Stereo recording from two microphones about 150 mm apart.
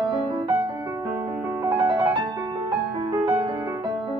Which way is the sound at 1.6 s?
15° right (ahead or behind).